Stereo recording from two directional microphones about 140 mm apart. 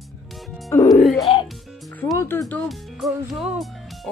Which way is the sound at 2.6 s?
Centre (ahead or behind).